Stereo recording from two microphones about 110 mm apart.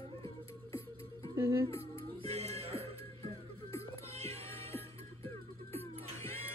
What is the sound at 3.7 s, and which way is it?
Music, 25° left (ahead or behind).